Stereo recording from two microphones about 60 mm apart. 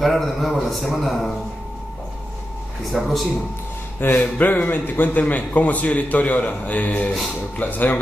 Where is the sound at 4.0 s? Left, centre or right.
Left.